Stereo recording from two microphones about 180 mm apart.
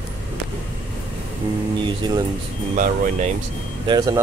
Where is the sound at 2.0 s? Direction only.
20° right (ahead or behind).